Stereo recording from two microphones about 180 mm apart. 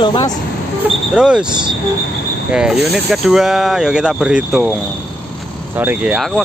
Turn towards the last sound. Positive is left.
turn(degrees=-5)  # may be behind; listen again after turning